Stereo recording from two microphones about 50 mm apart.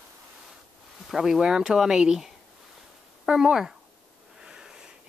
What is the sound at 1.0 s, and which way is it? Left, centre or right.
Speech, centre.